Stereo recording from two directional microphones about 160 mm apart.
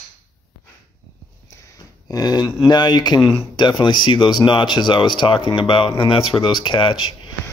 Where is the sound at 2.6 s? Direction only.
25° left (ahead or behind).